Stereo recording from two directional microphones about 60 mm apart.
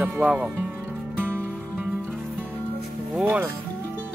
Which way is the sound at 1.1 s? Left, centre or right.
Right.